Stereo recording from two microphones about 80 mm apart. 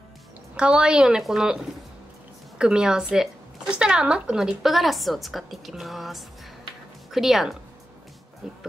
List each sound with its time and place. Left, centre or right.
0.6 s a woman's voice: centre
2.6 s a woman's voice: centre